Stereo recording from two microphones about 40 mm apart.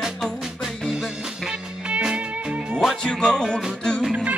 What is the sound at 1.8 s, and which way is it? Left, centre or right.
Music, right.